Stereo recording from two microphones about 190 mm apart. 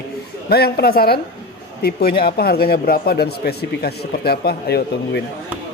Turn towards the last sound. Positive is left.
turn(degrees=55)  # may be behind; listen again after turning